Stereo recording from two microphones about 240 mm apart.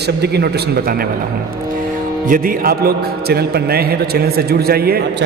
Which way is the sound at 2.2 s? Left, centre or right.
Right.